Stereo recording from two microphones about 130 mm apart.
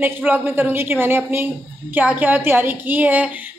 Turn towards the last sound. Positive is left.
turn(degrees=-15)  # may be behind; listen again after turning